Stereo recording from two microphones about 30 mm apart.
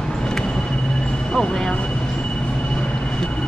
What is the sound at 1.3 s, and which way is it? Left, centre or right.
Speech, left.